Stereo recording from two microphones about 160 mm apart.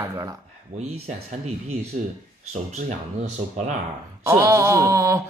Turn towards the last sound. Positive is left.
turn(degrees=-20)  # may be behind; listen again after turning